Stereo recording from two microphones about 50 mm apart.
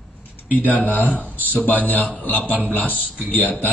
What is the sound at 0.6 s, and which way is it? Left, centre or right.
A man's voice, left.